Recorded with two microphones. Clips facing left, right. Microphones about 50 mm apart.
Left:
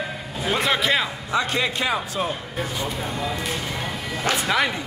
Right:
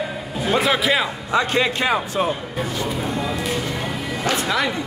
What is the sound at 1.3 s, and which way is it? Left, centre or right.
Speech, right.